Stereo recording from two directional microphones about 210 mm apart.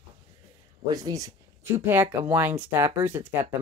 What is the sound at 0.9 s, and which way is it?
Speech, 15° right (ahead or behind).